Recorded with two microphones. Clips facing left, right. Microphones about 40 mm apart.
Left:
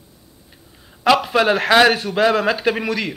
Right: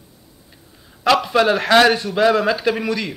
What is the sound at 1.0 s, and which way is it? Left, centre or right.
A man's voice, centre.